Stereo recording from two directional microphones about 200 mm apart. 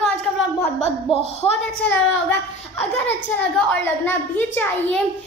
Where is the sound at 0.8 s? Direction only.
30° left (ahead or behind).